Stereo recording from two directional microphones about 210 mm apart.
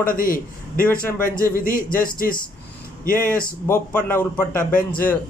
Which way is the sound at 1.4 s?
40° left (ahead or behind).